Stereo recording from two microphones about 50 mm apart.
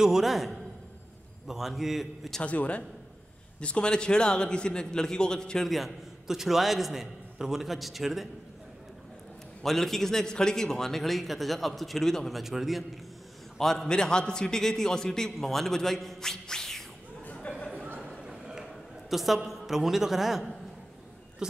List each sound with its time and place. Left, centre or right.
0.0 s a man's voice: centre
2.4 s a man's voice: left
5.7 s a man's voice: centre
9.6 s a man's voice: centre
13.6 s a man's voice: centre
17.3 s a sound: left
18.2 s a sound: centre
21.4 s speech: centre